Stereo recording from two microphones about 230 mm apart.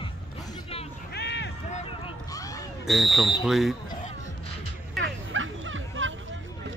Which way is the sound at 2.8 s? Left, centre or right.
Centre.